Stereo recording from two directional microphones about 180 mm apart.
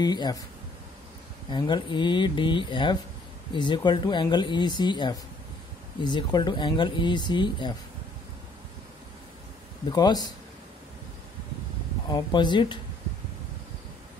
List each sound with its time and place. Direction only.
0.0 s speech: 20° left (ahead or behind)
1.5 s speech: 25° left (ahead or behind)
9.8 s speech: 25° left (ahead or behind)
12.1 s speech: 25° left (ahead or behind)